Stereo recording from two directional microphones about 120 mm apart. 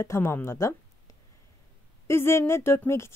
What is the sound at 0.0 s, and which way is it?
Speech, 20° left (ahead or behind).